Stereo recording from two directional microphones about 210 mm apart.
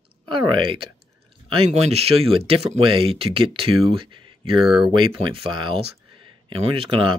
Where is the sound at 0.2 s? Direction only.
25° right (ahead or behind).